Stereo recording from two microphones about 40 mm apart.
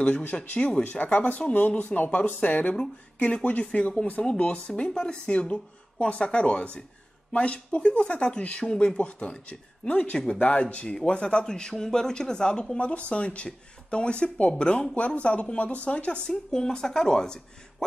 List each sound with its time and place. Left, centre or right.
0.6 s speech: left
0.8 s speech: left
3.3 s speech: left
12.7 s speech: left
16.3 s speech: centre